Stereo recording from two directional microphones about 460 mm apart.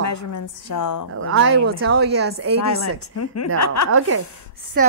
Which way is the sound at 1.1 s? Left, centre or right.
Right.